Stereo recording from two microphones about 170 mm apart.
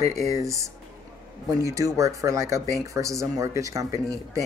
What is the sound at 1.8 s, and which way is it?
Speech, 20° right (ahead or behind).